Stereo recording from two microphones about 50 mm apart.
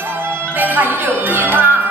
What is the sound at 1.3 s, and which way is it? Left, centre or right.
Music, right.